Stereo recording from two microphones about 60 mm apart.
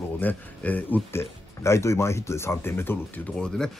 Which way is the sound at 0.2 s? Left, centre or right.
Left.